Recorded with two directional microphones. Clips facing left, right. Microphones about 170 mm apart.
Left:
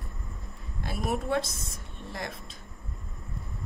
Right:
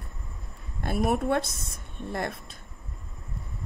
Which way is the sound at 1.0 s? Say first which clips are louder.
Right 2 dB; 50° right (ahead or behind).